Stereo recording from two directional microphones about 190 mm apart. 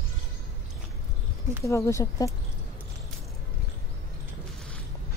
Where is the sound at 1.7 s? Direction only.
15° left (ahead or behind).